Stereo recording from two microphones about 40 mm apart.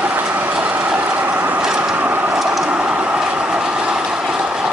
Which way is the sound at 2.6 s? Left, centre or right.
Right.